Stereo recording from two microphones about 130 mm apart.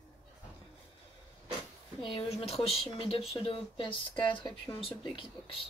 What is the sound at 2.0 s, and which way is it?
Speech, 45° left (ahead or behind).